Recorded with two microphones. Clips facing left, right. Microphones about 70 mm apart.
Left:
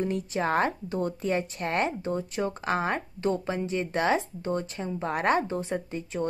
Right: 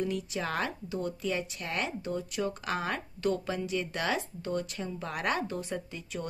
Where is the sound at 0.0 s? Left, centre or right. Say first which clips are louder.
Left 5 dB; left.